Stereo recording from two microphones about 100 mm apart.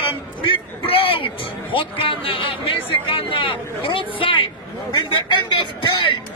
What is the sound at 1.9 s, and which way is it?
Speech, 60° left (ahead or behind).